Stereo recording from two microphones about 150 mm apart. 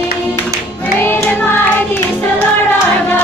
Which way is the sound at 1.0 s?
15° left (ahead or behind).